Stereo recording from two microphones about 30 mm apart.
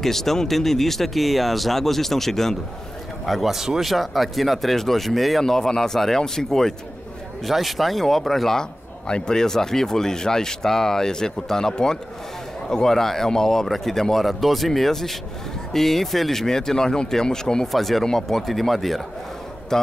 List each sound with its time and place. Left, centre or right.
0.0 s speech: centre
3.4 s speech: centre
3.8 s speech: centre
5.4 s speech: centre
7.4 s speech: centre
8.5 s speech: left
17.6 s speech: centre
19.7 s speech: centre